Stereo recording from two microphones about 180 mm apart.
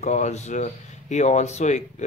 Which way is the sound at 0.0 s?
40° left (ahead or behind).